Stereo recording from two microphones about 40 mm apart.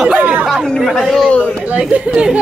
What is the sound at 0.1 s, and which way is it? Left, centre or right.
Chatter, right.